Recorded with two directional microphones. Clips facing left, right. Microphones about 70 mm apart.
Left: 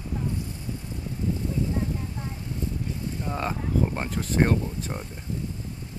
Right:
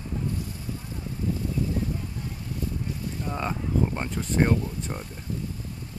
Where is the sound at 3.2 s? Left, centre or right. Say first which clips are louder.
Even; centre.